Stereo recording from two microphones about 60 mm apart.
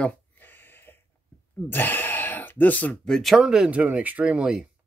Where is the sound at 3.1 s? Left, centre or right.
Centre.